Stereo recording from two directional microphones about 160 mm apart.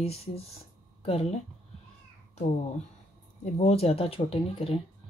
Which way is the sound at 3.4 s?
40° left (ahead or behind).